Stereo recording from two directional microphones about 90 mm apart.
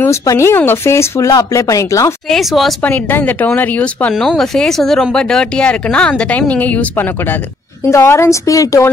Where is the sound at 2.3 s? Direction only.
Centre (ahead or behind).